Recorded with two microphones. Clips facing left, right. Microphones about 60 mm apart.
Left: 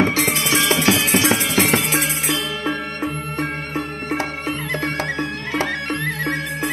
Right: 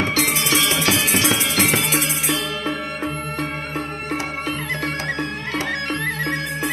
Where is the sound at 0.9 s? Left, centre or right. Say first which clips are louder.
Left 3 dB; left.